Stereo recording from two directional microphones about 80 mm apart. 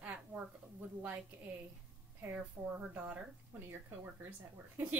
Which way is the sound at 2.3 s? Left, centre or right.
Centre.